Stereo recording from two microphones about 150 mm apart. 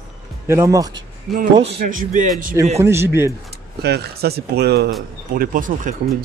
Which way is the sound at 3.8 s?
90° right.